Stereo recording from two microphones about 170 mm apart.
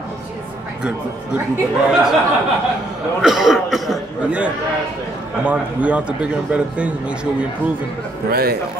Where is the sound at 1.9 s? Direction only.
5° right (ahead or behind).